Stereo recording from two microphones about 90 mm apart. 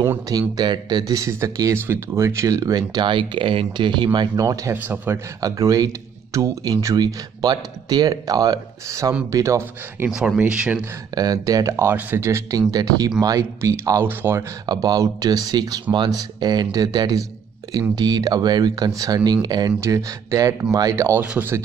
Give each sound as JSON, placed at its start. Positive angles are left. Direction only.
{"t": 0.3, "sound": "speech", "side_deg": -45}
{"t": 4.8, "sound": "speech", "side_deg": -25}
{"t": 5.4, "sound": "speech", "side_deg": -40}
{"t": 10.1, "sound": "speech", "side_deg": -10}
{"t": 11.1, "sound": "speech", "side_deg": -45}
{"t": 12.5, "sound": "speech", "side_deg": -45}
{"t": 14.7, "sound": "speech", "side_deg": -45}
{"t": 19.8, "sound": "speech", "side_deg": -35}
{"t": 21.2, "sound": "speech", "side_deg": -20}